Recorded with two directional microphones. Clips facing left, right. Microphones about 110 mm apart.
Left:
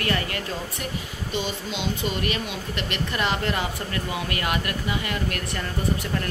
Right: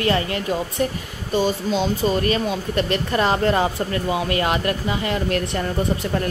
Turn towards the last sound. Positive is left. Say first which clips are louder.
# right 7 dB
turn(degrees=-25)  # may be behind; listen again after turning